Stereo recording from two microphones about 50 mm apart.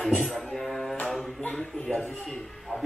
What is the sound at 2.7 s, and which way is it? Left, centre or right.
Speech, right.